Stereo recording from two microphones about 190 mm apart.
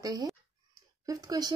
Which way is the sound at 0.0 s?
20° right (ahead or behind).